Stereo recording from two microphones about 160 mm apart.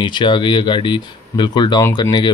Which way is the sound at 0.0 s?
30° left (ahead or behind).